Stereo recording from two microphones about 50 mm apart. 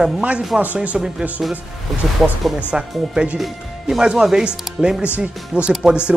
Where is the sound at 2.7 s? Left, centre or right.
Right.